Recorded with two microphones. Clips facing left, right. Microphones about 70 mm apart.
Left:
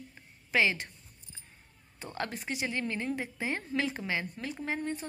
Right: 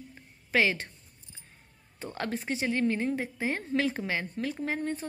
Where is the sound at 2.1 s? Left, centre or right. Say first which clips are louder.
Right 3 dB; right.